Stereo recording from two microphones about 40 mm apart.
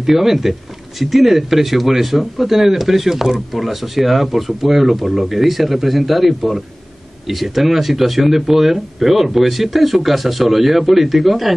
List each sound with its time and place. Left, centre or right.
0.0 s speech: centre